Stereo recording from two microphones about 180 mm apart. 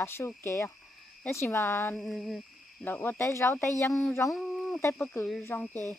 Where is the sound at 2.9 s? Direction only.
10° left (ahead or behind).